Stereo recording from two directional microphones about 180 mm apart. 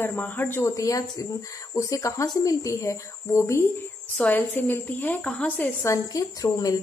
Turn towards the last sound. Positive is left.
turn(degrees=20)  # may be behind; listen again after turning